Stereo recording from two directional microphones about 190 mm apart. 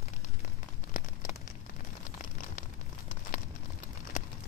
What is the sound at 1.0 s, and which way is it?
Crumpling, 45° left (ahead or behind).